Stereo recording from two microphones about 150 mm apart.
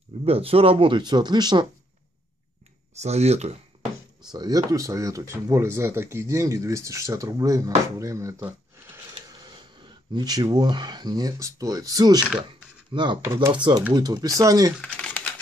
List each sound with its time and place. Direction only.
0.2 s speech: 40° right (ahead or behind)
3.0 s speech: 45° right (ahead or behind)
4.3 s speech: 25° right (ahead or behind)
9.1 s speech: 30° right (ahead or behind)
14.8 s typing: 5° left (ahead or behind)